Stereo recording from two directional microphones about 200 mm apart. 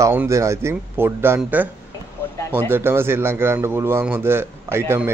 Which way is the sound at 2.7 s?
10° right (ahead or behind).